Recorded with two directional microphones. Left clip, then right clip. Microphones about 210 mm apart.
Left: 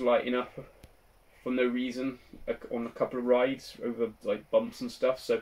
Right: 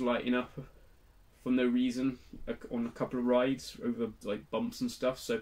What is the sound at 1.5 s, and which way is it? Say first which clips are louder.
Speech: left 1 dB; 15° right (ahead or behind).